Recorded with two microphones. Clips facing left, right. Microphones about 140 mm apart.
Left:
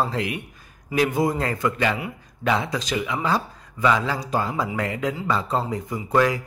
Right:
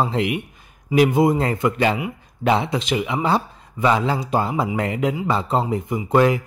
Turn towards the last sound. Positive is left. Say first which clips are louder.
# right 4 dB
turn(degrees=-25)  # may be behind; listen again after turning